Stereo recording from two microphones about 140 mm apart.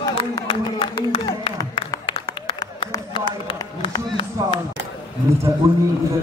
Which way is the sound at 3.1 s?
40° left (ahead or behind).